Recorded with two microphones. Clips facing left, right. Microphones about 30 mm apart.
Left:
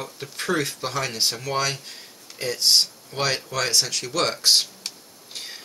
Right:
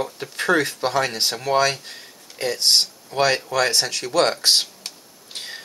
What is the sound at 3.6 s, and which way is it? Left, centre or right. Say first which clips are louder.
Speech: right 3 dB; right.